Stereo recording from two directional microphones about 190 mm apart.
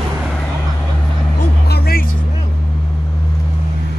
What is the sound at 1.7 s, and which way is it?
Music, 55° left (ahead or behind).